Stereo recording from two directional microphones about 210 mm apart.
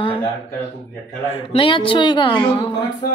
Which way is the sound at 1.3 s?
25° left (ahead or behind).